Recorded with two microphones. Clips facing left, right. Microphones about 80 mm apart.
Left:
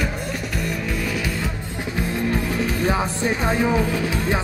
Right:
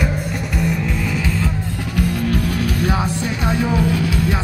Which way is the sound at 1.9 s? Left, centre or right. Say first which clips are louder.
Right 3 dB; right.